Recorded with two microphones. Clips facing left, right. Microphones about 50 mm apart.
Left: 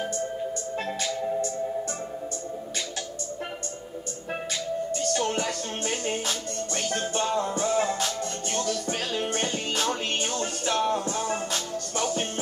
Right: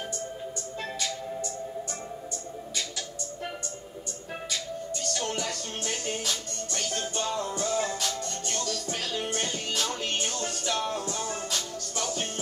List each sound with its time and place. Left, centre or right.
5.1 s music: left